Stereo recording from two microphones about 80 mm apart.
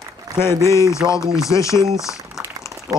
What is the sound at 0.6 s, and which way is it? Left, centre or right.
Speech, left.